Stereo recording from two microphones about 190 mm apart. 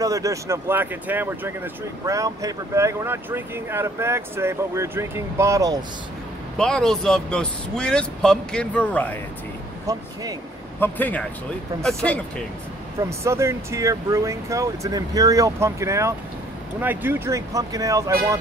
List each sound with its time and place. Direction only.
0.0 s speech: 15° right (ahead or behind)
6.5 s speech: 5° left (ahead or behind)
9.9 s speech: 15° right (ahead or behind)
10.8 s speech: 10° left (ahead or behind)
13.2 s speech: 15° right (ahead or behind)